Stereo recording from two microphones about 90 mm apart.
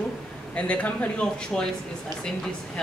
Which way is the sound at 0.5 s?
15° left (ahead or behind).